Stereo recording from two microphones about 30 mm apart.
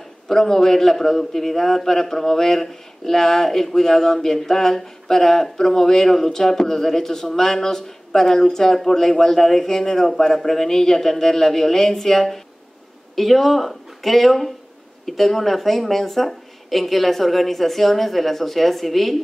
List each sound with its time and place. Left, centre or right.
0.3 s a man's voice: centre